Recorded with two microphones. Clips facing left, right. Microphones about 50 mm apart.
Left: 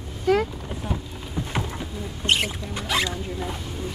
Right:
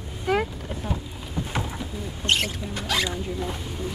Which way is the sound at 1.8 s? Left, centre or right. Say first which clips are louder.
Left 1 dB; centre.